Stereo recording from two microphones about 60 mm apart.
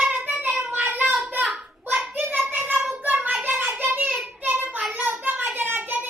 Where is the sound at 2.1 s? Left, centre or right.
Right.